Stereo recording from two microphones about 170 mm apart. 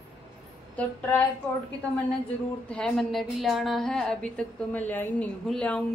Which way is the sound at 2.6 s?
5° left (ahead or behind).